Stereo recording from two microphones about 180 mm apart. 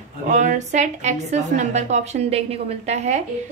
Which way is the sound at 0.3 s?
45° right (ahead or behind).